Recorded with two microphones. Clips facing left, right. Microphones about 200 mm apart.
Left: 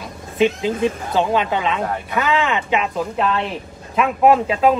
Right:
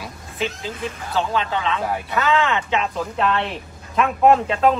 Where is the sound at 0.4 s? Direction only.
20° left (ahead or behind).